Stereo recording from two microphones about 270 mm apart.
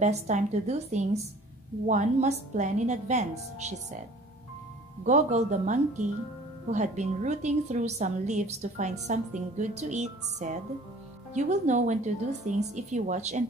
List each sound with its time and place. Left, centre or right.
0.0 s a woman's voice: right
5.0 s a woman's voice: right